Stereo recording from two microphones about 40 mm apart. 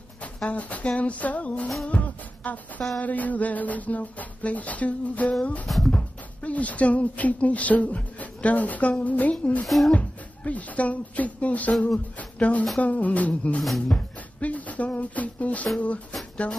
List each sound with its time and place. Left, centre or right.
0.5 s speech: left
1.9 s music: left
3.0 s speech: left
13.6 s speech: centre
13.8 s speech: left